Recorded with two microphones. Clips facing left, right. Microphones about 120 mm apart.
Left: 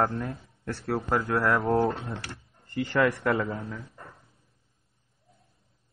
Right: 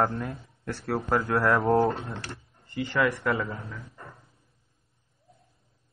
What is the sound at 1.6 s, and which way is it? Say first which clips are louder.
Speech: right 2 dB; centre (ahead or behind).